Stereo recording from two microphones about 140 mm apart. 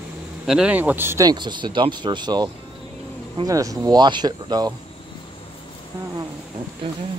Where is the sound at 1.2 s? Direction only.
35° right (ahead or behind).